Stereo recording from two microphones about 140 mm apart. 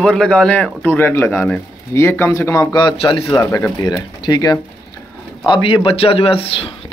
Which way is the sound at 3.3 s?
25° left (ahead or behind).